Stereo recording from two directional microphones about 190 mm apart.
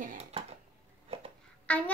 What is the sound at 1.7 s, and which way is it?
Music, 5° left (ahead or behind).